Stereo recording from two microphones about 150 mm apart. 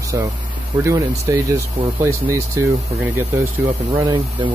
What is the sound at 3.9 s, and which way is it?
Speech, 25° right (ahead or behind).